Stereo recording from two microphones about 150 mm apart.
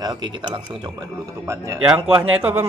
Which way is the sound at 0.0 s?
30° right (ahead or behind).